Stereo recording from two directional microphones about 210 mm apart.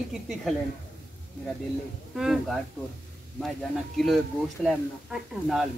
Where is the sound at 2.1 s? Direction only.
Centre (ahead or behind).